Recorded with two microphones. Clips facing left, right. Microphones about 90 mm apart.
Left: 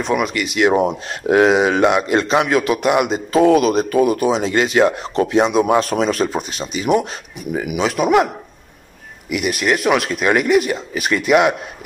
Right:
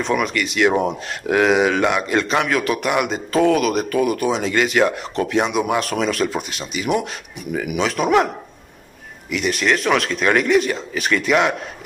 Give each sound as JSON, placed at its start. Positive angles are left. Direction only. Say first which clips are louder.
{"t": 0.0, "sound": "speech", "louder": "left 1 dB", "side_deg": 15}
{"t": 9.3, "sound": "speech", "louder": "left 1 dB", "side_deg": 15}